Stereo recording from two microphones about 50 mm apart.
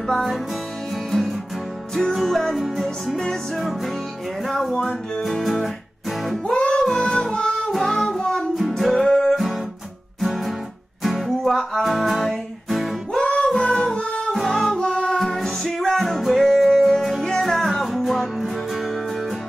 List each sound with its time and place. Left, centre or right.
0.0 s music: centre
2.0 s music: centre
4.7 s music: centre
5.2 s music: centre
6.4 s music: centre
8.5 s music: centre
10.2 s music: centre
13.1 s music: centre
15.1 s music: centre